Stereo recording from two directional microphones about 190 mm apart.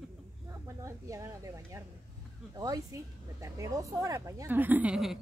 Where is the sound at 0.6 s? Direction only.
15° right (ahead or behind).